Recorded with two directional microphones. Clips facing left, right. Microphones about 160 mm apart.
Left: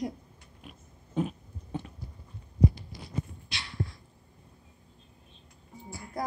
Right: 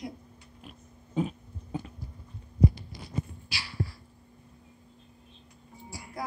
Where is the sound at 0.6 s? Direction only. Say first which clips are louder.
Even; centre (ahead or behind).